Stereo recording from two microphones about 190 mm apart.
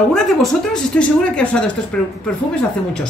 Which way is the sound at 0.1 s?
Centre (ahead or behind).